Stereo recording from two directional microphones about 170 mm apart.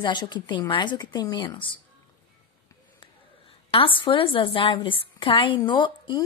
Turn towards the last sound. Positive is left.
turn(degrees=25)  # may be behind; listen again after turning